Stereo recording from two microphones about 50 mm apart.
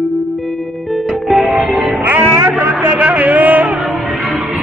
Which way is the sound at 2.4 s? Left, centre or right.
Right.